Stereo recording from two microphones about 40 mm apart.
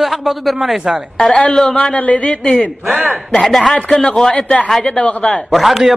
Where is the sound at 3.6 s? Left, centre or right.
Centre.